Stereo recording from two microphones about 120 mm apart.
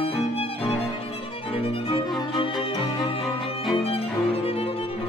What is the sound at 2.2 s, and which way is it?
Music, 45° left (ahead or behind).